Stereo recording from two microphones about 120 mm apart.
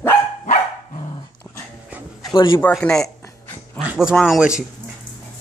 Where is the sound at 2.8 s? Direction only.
5° left (ahead or behind).